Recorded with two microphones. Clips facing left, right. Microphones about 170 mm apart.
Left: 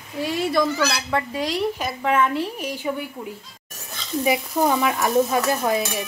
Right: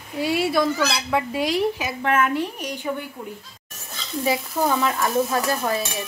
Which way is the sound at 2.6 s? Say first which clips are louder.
Left 1 dB; 5° left (ahead or behind).